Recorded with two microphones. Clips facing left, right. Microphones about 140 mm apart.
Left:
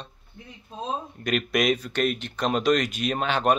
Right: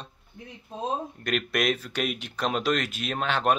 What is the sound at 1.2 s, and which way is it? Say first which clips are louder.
Speech: left 5 dB; centre (ahead or behind).